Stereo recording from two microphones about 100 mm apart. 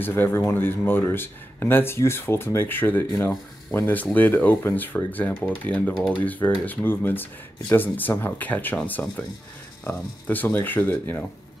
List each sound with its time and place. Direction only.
0.0 s speech: 20° left (ahead or behind)
3.8 s speech: 15° left (ahead or behind)